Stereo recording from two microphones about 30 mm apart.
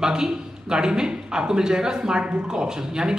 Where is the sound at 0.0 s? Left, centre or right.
Right.